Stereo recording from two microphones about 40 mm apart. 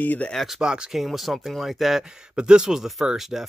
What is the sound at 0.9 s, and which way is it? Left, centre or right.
Speech, centre.